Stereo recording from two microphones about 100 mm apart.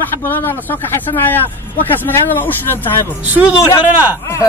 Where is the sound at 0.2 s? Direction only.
20° left (ahead or behind).